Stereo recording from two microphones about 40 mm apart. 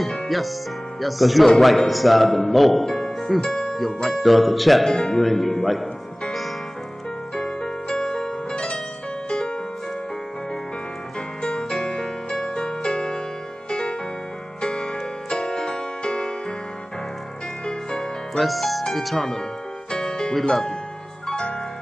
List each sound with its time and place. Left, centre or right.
0.0 s music: centre
1.0 s speech: centre
4.9 s speech: centre
7.3 s music: centre
11.4 s music: centre
17.6 s music: centre
18.4 s music: centre
19.9 s music: centre
20.3 s speech: centre
21.3 s music: centre